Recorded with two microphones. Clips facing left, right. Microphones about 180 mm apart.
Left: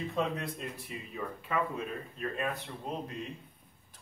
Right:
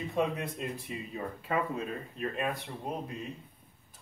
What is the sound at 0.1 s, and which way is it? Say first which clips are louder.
Speech: right 5 dB; 20° right (ahead or behind).